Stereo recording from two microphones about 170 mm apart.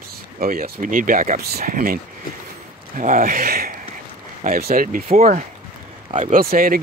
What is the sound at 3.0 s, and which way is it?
Speech, 50° right (ahead or behind).